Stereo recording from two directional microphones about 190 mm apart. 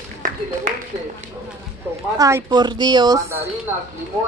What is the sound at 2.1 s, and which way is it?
A woman's voice, 20° right (ahead or behind).